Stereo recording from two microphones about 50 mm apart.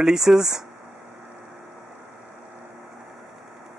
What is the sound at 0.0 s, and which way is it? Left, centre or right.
Speech, centre.